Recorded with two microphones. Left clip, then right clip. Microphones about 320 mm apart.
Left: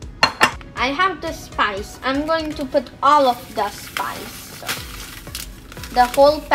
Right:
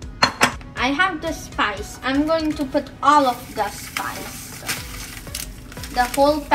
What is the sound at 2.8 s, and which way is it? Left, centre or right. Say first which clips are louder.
Speech: left 2 dB; left.